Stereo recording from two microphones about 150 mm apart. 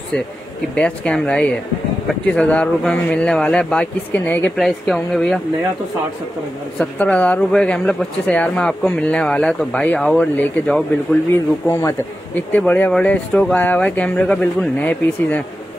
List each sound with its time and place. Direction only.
0.7 s speech: 5° left (ahead or behind)
6.8 s speech: 10° left (ahead or behind)
11.3 s speech: 20° left (ahead or behind)